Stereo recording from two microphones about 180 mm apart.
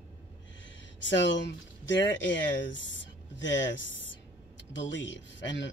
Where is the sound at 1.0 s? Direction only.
80° left.